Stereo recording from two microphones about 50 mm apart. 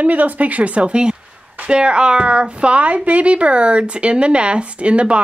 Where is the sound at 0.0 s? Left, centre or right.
Right.